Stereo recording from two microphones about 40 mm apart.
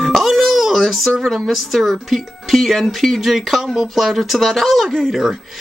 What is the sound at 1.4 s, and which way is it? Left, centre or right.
Speech, centre.